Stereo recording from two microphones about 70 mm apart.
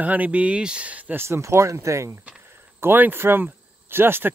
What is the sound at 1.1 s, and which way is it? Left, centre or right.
Speech, right.